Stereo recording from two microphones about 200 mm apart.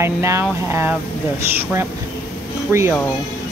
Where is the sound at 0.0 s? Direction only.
15° right (ahead or behind).